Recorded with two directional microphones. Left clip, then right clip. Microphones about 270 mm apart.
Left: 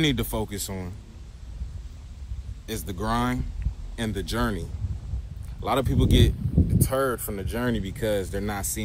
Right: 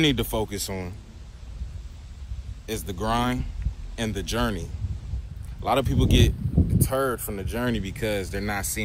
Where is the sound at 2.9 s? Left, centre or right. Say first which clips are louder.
Right 1 dB; centre.